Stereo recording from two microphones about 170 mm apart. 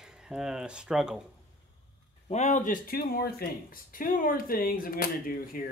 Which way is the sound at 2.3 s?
45° left (ahead or behind).